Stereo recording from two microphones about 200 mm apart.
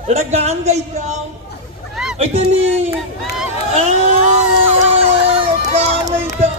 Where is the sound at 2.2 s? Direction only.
30° right (ahead or behind).